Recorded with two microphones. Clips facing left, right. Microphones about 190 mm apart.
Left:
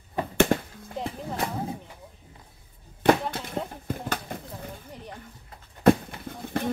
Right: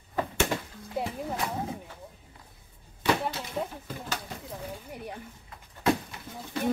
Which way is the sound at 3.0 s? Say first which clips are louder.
Left 6 dB; 55° left (ahead or behind).